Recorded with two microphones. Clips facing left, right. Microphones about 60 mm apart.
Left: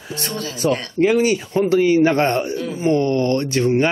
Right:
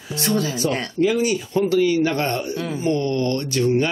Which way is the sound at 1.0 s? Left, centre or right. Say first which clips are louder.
Left 4 dB; left.